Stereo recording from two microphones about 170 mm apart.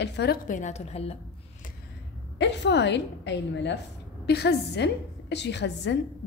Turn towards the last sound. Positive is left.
turn(degrees=90)